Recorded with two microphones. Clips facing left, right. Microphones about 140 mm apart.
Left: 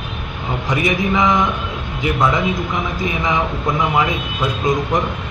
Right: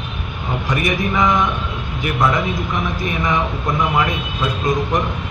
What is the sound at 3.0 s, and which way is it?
A man's voice, 20° left (ahead or behind).